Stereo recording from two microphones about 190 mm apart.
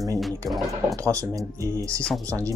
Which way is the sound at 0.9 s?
15° right (ahead or behind).